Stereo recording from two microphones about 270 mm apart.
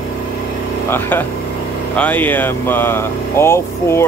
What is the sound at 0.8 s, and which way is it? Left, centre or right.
Speech, centre.